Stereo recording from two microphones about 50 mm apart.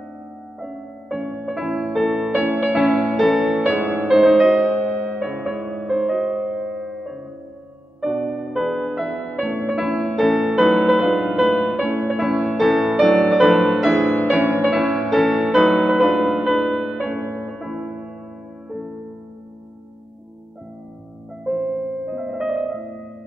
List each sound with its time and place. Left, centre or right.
0.6 s music: centre
5.1 s music: centre
5.5 s music: centre
9.7 s music: centre
14.2 s music: centre
17.8 s music: centre
21.5 s music: centre